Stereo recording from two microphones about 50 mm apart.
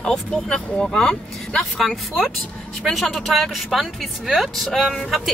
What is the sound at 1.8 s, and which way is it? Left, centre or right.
A woman's voice, centre.